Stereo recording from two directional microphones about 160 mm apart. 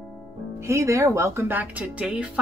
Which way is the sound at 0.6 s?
20° right (ahead or behind).